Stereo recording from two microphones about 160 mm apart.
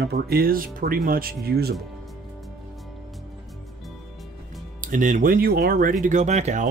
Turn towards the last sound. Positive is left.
turn(degrees=-45)  # may be behind; listen again after turning